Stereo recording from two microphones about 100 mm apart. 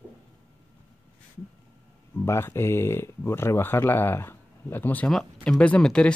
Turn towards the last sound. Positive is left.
turn(degrees=10)  # may be behind; listen again after turning